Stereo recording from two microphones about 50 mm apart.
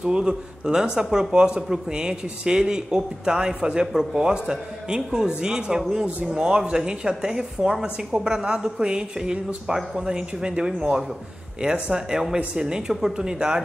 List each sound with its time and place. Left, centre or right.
0.0 s a man's voice: centre